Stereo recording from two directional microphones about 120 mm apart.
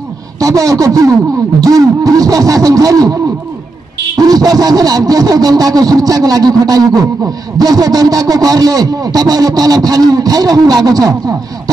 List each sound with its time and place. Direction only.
0.4 s a sound: 30° right (ahead or behind)
1.6 s a man's voice: 30° right (ahead or behind)
4.2 s a man's voice: 35° right (ahead or behind)